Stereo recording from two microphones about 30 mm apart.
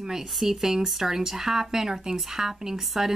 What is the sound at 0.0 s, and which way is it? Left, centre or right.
Speech, centre.